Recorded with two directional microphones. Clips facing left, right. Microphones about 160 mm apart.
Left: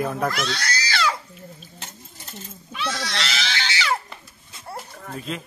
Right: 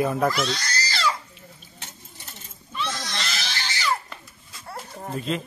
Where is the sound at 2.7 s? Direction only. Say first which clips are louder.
Left 2 dB; 75° left (ahead or behind).